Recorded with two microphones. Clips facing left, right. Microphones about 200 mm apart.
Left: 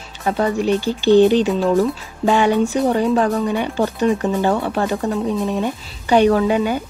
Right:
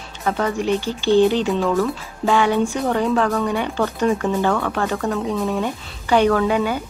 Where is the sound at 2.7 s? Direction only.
20° left (ahead or behind).